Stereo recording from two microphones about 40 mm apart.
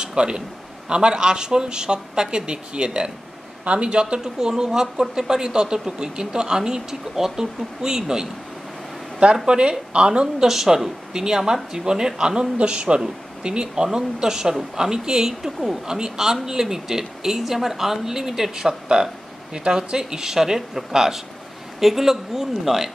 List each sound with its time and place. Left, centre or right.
0.0 s a sound: centre
0.8 s speech: right
4.4 s speech: centre
9.5 s speech: right
10.4 s speech: centre